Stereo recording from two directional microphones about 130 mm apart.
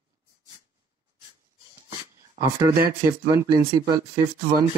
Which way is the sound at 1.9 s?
25° right (ahead or behind).